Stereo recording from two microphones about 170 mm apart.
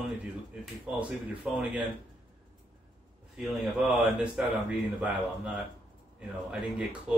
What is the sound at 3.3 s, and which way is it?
A man's voice, centre (ahead or behind).